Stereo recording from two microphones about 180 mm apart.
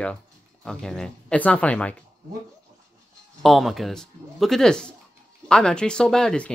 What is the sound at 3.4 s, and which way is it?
Speech, centre (ahead or behind).